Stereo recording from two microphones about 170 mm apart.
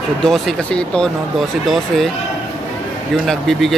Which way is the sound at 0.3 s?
5° left (ahead or behind).